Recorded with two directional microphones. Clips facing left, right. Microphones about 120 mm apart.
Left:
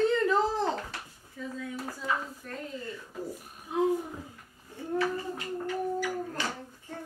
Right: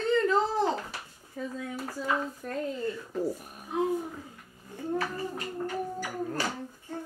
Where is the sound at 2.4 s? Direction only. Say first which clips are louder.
Right 6 dB; 45° right (ahead or behind).